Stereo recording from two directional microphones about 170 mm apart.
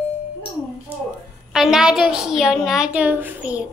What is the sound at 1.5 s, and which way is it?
A woman's voice, centre (ahead or behind).